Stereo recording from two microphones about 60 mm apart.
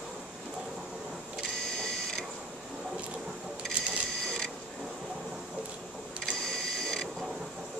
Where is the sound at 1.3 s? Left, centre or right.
Centre.